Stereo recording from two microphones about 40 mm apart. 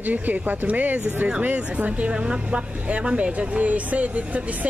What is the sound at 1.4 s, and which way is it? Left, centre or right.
Speech, right.